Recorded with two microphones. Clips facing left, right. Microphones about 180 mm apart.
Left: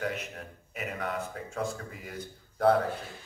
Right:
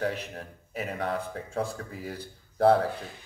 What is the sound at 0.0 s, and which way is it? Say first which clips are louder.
A man's voice: right 3 dB; 35° right (ahead or behind).